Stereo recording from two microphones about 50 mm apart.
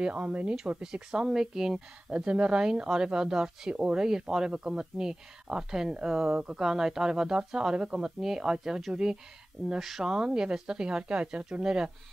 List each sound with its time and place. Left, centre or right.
0.0 s speech: right
2.1 s speech: right
9.7 s speech: centre